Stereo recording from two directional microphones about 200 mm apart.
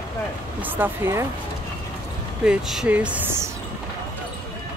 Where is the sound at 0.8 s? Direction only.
10° right (ahead or behind).